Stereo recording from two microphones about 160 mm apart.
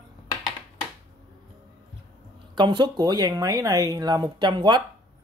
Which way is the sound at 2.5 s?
30° right (ahead or behind).